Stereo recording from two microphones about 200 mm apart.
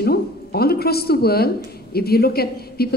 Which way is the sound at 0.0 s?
50° left (ahead or behind).